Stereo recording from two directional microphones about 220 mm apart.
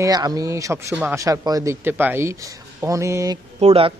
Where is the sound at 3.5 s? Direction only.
30° right (ahead or behind).